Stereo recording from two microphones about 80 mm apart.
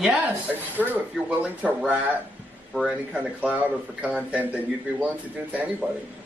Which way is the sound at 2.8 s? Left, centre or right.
Centre.